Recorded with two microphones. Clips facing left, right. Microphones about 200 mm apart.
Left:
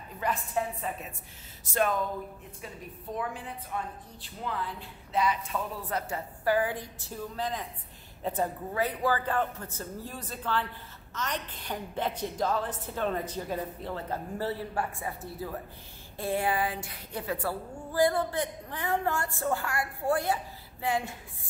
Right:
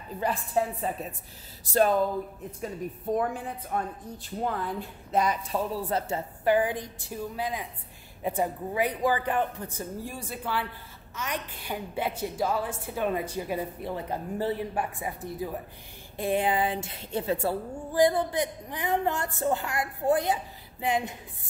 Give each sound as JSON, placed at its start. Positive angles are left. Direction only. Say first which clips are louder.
{"t": 0.2, "sound": "a woman's voice", "louder": "right 3 dB", "side_deg": -30}
{"t": 2.6, "sound": "a woman's voice", "louder": "right 10 dB", "side_deg": -45}